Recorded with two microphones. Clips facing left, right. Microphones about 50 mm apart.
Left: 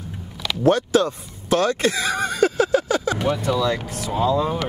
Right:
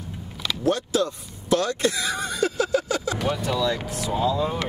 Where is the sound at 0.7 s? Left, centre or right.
Left.